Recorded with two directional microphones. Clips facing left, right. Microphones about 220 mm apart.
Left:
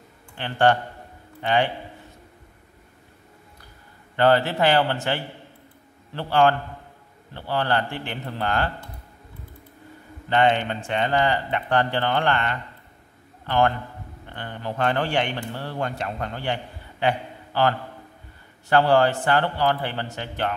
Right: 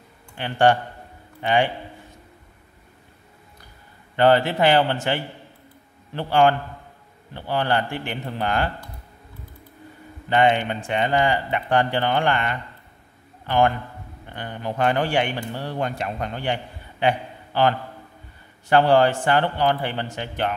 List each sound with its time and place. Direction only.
0.4 s speech: 15° right (ahead or behind)
4.2 s speech: 15° right (ahead or behind)
10.3 s speech: 15° right (ahead or behind)
17.5 s a man's voice: 15° right (ahead or behind)